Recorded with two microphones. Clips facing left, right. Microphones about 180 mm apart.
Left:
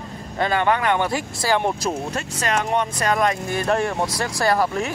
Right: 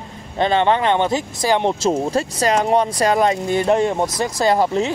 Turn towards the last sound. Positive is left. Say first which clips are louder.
# right 4 dB
turn(degrees=-20)  # may be behind; listen again after turning